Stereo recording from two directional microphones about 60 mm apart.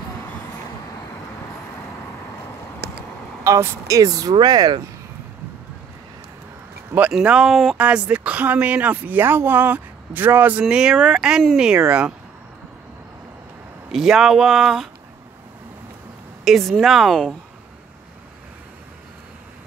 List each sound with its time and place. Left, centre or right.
3.4 s speech: right
6.9 s speech: right
7.4 s speech: centre
7.7 s speech: right
10.6 s speech: centre
13.9 s speech: centre
16.4 s speech: centre